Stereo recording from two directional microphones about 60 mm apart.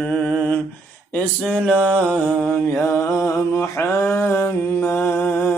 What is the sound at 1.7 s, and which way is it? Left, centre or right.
Mantra, centre.